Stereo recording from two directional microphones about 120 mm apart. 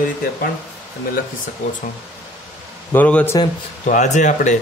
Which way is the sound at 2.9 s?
15° left (ahead or behind).